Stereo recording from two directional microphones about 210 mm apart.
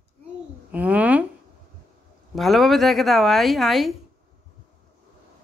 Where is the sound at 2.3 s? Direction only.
Centre (ahead or behind).